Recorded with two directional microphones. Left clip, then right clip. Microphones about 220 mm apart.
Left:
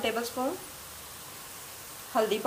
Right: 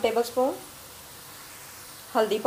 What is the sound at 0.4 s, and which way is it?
Speech, 15° left (ahead or behind).